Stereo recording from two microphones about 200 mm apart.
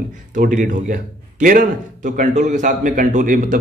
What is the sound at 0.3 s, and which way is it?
A man's voice, 40° right (ahead or behind).